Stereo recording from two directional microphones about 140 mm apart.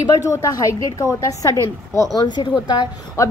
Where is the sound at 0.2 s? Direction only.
20° left (ahead or behind).